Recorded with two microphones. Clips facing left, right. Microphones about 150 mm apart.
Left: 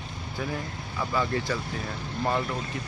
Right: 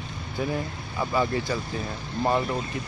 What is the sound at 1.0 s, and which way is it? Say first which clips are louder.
Speech: right 3 dB; 20° right (ahead or behind).